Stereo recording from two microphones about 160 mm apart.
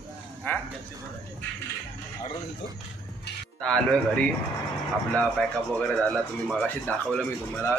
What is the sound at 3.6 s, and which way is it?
Speech, 5° left (ahead or behind).